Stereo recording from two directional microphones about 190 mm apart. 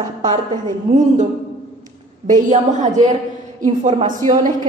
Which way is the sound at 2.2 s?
40° right (ahead or behind).